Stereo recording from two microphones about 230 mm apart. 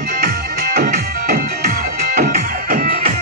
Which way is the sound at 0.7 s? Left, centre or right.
Right.